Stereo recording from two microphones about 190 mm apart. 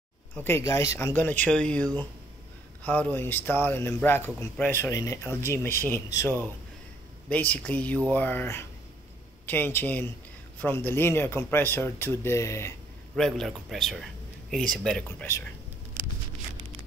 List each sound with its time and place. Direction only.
0.4 s speech: 15° left (ahead or behind)
13.1 s speech: centre (ahead or behind)